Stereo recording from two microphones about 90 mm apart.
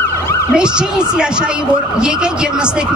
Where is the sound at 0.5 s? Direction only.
10° right (ahead or behind).